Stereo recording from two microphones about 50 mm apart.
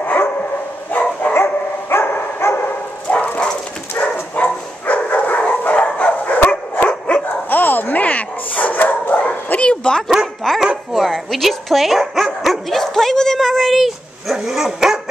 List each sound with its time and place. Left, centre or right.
0.0 s dog: left
1.3 s dog: left
2.6 s dog: left
6.8 s dog: left
7.4 s bow-wow: left
9.7 s dog: centre
10.4 s music: centre
10.9 s dog: centre